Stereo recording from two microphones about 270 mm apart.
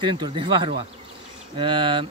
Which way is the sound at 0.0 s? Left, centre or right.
Centre.